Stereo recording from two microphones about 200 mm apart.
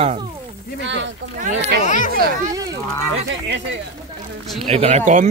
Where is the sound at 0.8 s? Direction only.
65° right (ahead or behind).